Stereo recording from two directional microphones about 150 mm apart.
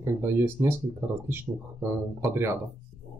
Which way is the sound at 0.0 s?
15° right (ahead or behind).